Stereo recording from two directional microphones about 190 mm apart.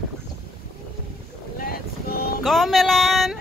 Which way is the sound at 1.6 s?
50° left (ahead or behind).